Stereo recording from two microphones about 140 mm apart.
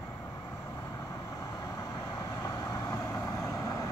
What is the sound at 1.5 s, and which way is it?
Vehicle, 25° left (ahead or behind).